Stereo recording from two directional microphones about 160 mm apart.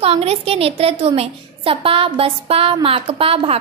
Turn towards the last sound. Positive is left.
turn(degrees=-35)  # may be behind; listen again after turning